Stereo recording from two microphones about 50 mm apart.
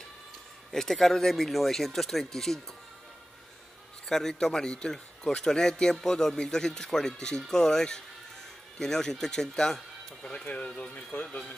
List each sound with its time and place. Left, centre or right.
0.7 s speech: centre
4.1 s speech: centre
10.4 s speech: left
10.7 s speech: centre